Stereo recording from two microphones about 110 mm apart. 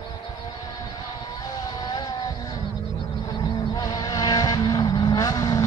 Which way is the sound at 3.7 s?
35° left (ahead or behind).